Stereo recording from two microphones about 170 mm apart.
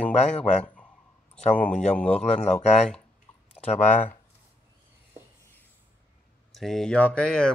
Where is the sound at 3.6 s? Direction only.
5° left (ahead or behind).